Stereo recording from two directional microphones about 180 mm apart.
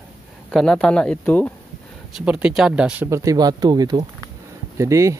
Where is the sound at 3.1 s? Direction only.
20° right (ahead or behind).